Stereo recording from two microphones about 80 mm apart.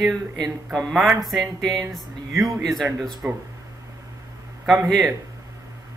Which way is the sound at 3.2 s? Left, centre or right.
Centre.